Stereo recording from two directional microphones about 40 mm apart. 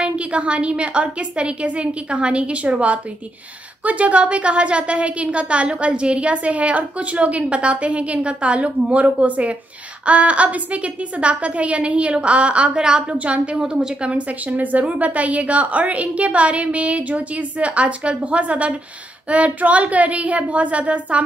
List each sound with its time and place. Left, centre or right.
0.0 s a woman's voice: right
13.6 s a woman's voice: right
14.1 s a woman's voice: right